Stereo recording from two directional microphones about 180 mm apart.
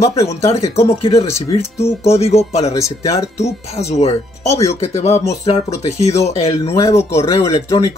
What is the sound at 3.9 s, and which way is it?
Speech, 35° left (ahead or behind).